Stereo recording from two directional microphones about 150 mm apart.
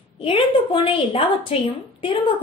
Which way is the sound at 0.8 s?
35° left (ahead or behind).